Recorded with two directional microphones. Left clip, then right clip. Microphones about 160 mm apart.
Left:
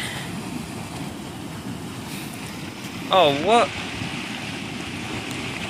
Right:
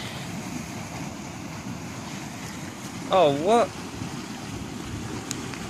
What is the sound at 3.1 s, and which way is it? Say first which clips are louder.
Speech: left 3 dB; 70° right (ahead or behind).